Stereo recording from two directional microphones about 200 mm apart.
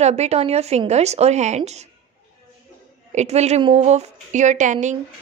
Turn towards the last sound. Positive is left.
turn(degrees=-40)  # may be behind; listen again after turning